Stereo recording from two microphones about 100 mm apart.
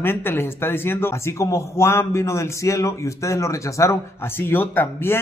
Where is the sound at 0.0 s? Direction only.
20° left (ahead or behind).